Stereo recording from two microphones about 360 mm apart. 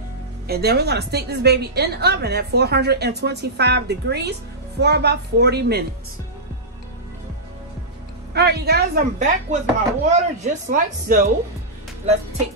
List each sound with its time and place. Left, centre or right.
0.5 s a woman's voice: right
8.3 s a woman's voice: right